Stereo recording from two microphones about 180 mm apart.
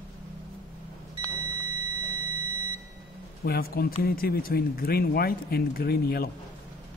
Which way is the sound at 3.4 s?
60° left (ahead or behind).